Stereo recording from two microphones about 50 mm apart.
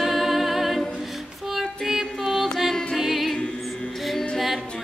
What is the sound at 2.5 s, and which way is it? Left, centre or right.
Music, centre.